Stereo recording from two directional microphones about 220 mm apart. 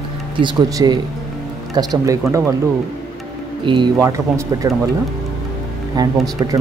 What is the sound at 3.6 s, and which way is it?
Speech, 20° right (ahead or behind).